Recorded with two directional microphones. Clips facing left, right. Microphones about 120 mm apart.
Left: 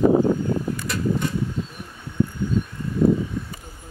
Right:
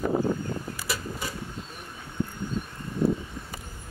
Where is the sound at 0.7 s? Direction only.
5° right (ahead or behind).